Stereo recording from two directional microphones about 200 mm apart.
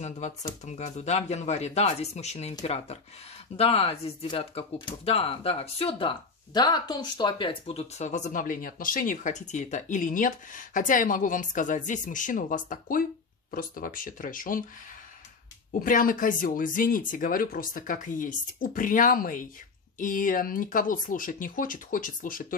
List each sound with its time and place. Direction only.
0.0 s speech: 35° left (ahead or behind)
15.8 s speech: 45° left (ahead or behind)